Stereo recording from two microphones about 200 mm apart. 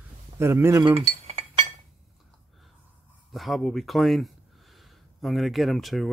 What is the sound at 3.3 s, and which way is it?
Speech, centre (ahead or behind).